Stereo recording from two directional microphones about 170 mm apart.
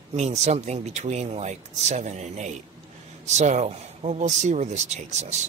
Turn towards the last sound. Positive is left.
turn(degrees=-40)  # may be behind; listen again after turning